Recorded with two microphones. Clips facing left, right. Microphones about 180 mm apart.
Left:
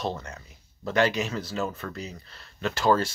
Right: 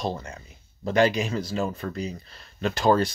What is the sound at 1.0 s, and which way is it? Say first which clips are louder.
Speech: right 3 dB; 15° right (ahead or behind).